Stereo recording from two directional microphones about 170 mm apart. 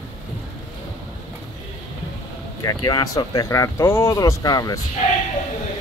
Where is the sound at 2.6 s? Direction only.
25° left (ahead or behind).